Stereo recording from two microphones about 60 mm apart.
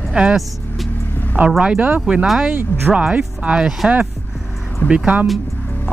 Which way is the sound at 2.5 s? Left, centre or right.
Right.